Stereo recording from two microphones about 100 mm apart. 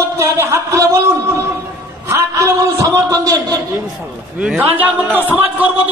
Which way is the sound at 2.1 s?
30° right (ahead or behind).